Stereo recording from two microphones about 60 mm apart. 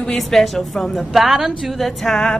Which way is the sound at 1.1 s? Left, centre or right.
Centre.